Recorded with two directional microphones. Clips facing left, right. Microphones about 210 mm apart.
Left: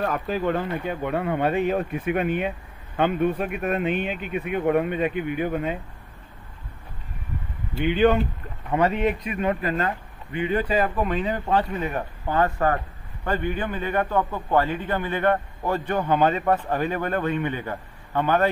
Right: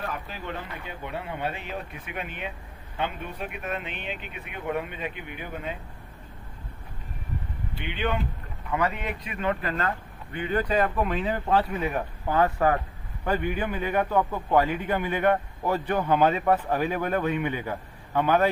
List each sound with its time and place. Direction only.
0.0 s speech: 50° left (ahead or behind)
7.7 s speech: 45° left (ahead or behind)
8.6 s speech: 30° left (ahead or behind); by 18.5 s 5° right (ahead or behind)